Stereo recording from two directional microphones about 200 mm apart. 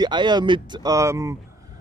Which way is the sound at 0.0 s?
20° right (ahead or behind).